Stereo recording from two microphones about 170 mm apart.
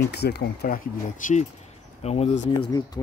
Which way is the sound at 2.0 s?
40° left (ahead or behind).